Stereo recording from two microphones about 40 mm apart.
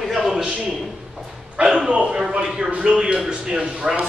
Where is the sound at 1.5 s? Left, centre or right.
Centre.